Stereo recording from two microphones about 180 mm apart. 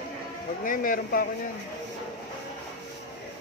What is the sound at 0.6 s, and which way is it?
Speech, 50° left (ahead or behind).